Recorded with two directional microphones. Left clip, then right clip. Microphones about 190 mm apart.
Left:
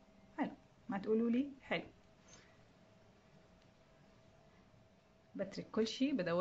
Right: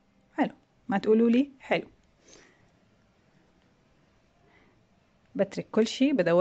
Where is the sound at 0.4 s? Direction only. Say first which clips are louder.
Right 13 dB; 50° right (ahead or behind).